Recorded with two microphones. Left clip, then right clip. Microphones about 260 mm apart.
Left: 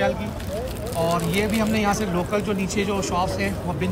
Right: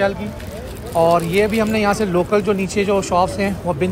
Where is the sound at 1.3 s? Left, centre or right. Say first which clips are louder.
Right 7 dB; left.